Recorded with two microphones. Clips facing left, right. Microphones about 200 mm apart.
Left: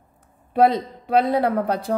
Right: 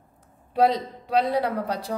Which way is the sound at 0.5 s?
55° left (ahead or behind).